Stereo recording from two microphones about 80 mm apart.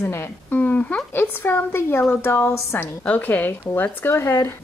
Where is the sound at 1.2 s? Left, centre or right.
Left.